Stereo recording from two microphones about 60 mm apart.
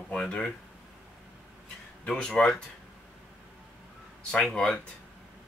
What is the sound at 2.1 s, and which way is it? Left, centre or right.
Speech, centre.